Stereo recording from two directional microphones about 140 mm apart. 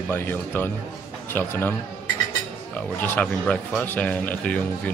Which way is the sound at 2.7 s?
10° left (ahead or behind).